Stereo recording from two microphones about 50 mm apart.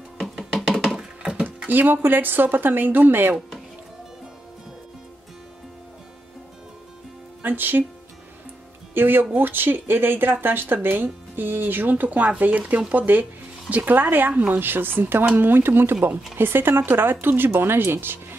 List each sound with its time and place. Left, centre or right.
0.5 s a sound: centre
0.9 s a sound: centre
1.7 s speech: right
3.3 s music: centre
7.4 s speech: right
8.9 s speech: right